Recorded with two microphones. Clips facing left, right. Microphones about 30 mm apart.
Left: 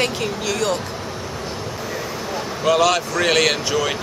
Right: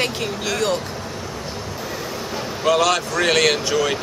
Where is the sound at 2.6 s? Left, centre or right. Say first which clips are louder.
Left 1 dB; centre.